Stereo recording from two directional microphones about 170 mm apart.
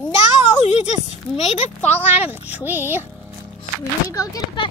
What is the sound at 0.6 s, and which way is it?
Speech, 40° left (ahead or behind).